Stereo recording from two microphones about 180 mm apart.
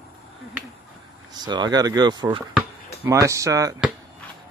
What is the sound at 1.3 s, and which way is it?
Speech, 25° right (ahead or behind).